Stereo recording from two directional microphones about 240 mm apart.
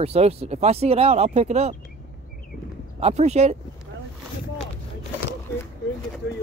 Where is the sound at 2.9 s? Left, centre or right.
Right.